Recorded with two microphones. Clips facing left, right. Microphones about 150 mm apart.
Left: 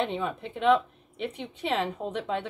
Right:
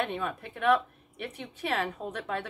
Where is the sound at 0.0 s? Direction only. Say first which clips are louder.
Left 3 dB; 20° left (ahead or behind).